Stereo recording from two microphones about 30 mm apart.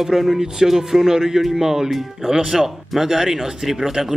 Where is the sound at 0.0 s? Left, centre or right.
Centre.